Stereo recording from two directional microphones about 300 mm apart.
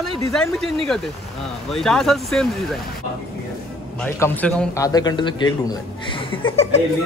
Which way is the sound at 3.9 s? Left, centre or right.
Centre.